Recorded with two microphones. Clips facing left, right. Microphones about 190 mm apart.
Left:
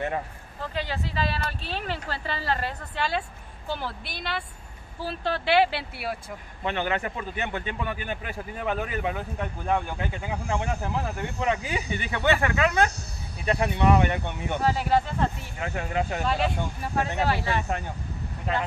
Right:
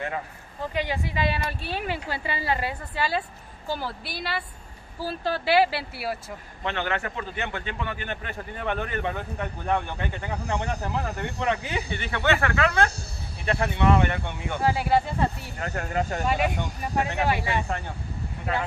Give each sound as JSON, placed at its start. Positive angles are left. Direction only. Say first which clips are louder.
{"t": 0.6, "sound": "speech", "louder": "right 3 dB", "side_deg": -15}
{"t": 6.6, "sound": "speech", "louder": "left 1 dB", "side_deg": 15}
{"t": 14.6, "sound": "speech", "louder": "right 1 dB", "side_deg": -10}
{"t": 16.3, "sound": "speech", "louder": "right 1 dB", "side_deg": -15}